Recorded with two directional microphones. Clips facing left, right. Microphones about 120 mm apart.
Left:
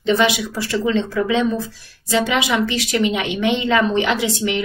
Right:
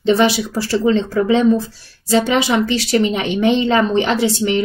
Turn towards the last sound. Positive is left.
turn(degrees=-35)  # may be behind; listen again after turning